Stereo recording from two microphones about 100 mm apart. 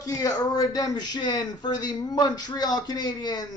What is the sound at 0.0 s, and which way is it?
Speech, 35° left (ahead or behind).